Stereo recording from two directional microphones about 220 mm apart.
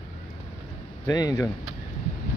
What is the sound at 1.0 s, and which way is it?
Speech, 15° left (ahead or behind).